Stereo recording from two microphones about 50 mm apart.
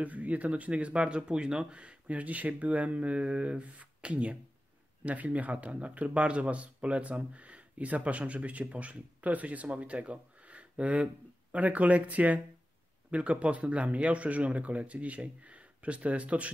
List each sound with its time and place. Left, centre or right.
0.0 s speech: right